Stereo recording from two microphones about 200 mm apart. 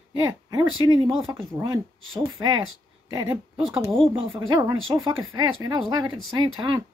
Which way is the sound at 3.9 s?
25° right (ahead or behind).